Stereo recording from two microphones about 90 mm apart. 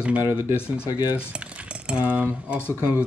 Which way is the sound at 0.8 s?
45° left (ahead or behind).